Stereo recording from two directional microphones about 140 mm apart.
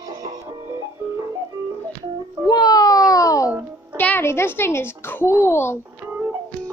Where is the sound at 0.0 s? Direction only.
25° right (ahead or behind).